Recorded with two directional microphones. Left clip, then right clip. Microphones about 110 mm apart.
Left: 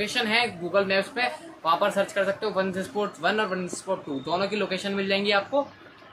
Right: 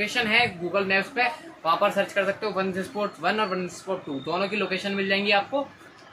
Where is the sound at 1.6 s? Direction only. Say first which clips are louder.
Right 1 dB; 15° left (ahead or behind).